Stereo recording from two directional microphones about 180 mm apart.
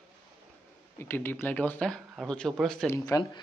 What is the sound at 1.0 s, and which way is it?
Speech, 10° left (ahead or behind).